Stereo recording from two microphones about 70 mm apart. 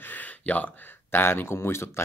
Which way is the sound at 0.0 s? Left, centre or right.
Left.